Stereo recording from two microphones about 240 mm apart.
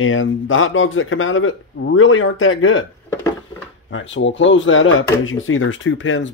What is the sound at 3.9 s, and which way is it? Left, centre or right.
Speech, left.